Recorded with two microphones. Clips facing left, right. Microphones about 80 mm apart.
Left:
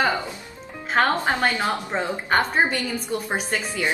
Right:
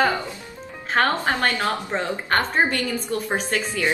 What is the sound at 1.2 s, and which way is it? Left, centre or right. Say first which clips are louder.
A woman's voice: even; centre.